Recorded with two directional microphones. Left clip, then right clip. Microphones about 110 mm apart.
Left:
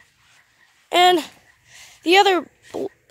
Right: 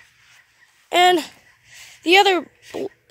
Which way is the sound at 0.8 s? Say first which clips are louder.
Even; 5° left (ahead or behind).